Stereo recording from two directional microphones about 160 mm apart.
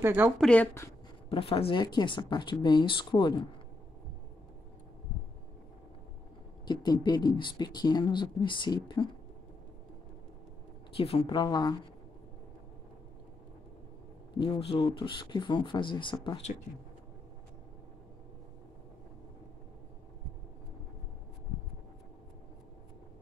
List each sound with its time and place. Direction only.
0.0 s a woman's voice: 15° right (ahead or behind)
0.4 s speech: 5° left (ahead or behind)
1.3 s speech: 35° left (ahead or behind)
6.6 s speech: 25° left (ahead or behind)
11.0 s speech: 35° left (ahead or behind)
14.3 s speech: 30° left (ahead or behind)